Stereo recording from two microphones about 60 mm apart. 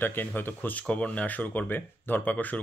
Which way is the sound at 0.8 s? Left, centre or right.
Centre.